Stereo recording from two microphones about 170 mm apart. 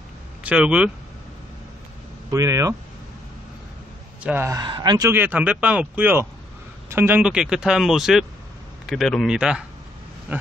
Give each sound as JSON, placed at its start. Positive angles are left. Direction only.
{"t": 0.4, "sound": "speech", "side_deg": -5}
{"t": 2.3, "sound": "speech", "side_deg": -20}
{"t": 4.2, "sound": "a man's voice", "side_deg": -10}
{"t": 4.6, "sound": "speech", "side_deg": -25}
{"t": 5.1, "sound": "a man's voice", "side_deg": -10}